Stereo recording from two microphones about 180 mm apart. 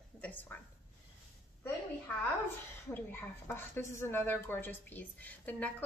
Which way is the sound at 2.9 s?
10° left (ahead or behind).